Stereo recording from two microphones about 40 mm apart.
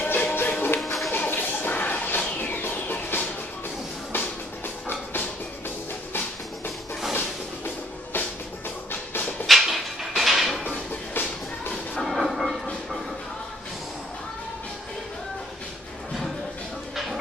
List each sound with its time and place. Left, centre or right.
0.0 s music: left
0.7 s music: centre
1.1 s a sound: left
2.3 s music: left
4.8 s music: left
7.2 s music: left
9.5 s a sound: centre
11.2 s music: left
12.0 s train: centre
16.9 s music: centre